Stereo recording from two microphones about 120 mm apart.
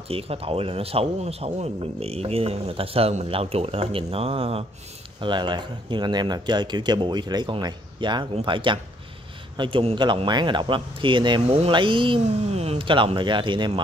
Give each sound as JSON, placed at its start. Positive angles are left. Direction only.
{"t": 0.1, "sound": "a man's voice", "side_deg": -55}
{"t": 5.2, "sound": "speech", "side_deg": -40}
{"t": 11.4, "sound": "speech", "side_deg": -55}
{"t": 12.4, "sound": "speech", "side_deg": -60}